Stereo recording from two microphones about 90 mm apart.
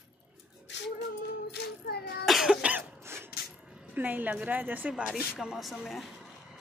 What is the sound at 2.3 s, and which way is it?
Cough, 5° right (ahead or behind).